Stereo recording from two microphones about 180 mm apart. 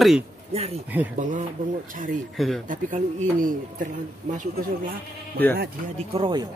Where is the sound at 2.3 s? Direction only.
Centre (ahead or behind).